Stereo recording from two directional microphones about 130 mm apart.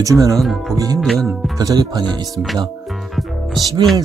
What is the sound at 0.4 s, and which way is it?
Speech, centre (ahead or behind).